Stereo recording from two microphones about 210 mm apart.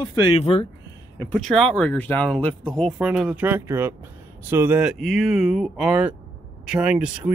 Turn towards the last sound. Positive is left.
turn(degrees=-5)  # may be behind; listen again after turning